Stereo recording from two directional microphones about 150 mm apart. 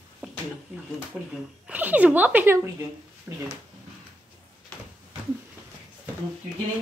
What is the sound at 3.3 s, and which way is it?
Speech, 15° right (ahead or behind).